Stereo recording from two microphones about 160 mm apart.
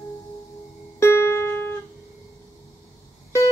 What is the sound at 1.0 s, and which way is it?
Music, 15° left (ahead or behind).